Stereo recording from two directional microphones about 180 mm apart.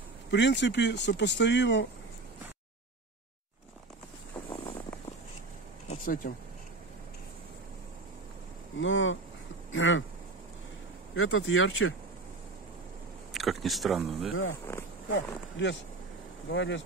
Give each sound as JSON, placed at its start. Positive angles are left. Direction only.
{"t": 0.3, "sound": "speech", "side_deg": 75}
{"t": 5.9, "sound": "a sound", "side_deg": 50}
{"t": 8.7, "sound": "speech", "side_deg": 90}
{"t": 11.1, "sound": "speech", "side_deg": 90}
{"t": 13.3, "sound": "speech", "side_deg": 0}
{"t": 15.1, "sound": "speech", "side_deg": 90}